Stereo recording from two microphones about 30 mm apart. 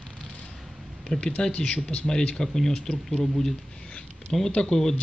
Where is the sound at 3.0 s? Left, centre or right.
Centre.